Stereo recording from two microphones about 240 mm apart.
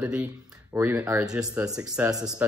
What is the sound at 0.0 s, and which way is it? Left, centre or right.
Speech, centre.